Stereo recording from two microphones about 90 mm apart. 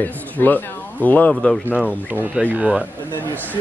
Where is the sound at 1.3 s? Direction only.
10° left (ahead or behind).